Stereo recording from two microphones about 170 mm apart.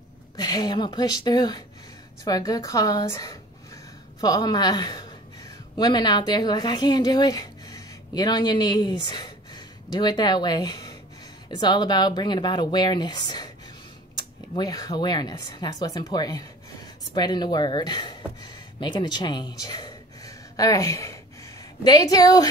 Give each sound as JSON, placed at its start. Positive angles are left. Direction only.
{"t": 0.4, "sound": "a woman's voice", "side_deg": 25}